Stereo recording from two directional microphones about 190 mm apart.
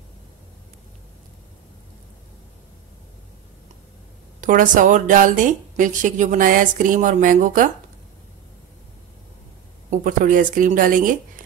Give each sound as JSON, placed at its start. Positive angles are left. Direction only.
{"t": 4.4, "sound": "speech", "side_deg": -45}
{"t": 9.8, "sound": "speech", "side_deg": -45}